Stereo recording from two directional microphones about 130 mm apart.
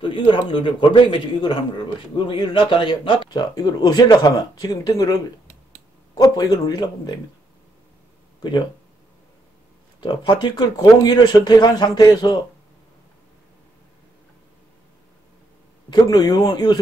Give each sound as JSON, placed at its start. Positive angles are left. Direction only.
{"t": 0.0, "sound": "a man's voice", "side_deg": 40}
{"t": 8.4, "sound": "speech", "side_deg": 35}
{"t": 9.9, "sound": "a man's voice", "side_deg": 35}
{"t": 15.9, "sound": "a man's voice", "side_deg": 30}